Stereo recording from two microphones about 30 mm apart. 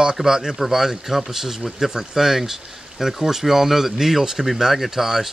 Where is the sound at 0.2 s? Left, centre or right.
Centre.